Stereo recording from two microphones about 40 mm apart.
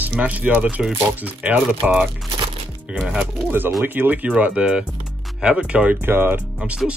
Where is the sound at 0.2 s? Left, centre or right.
Right.